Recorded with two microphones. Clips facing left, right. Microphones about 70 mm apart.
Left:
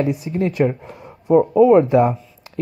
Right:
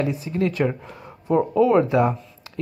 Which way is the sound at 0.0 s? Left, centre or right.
Left.